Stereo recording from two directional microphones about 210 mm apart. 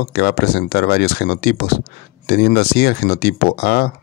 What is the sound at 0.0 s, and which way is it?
Speech, 50° left (ahead or behind).